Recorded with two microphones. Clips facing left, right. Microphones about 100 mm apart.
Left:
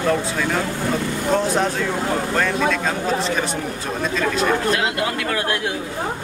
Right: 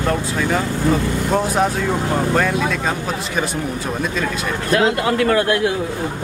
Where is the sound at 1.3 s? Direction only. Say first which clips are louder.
Right 1 dB; 10° right (ahead or behind).